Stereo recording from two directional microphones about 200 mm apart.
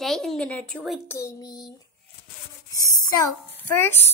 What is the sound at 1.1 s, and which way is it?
Music, 15° left (ahead or behind).